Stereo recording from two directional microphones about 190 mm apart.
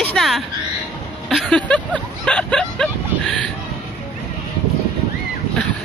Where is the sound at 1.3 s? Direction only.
5° left (ahead or behind).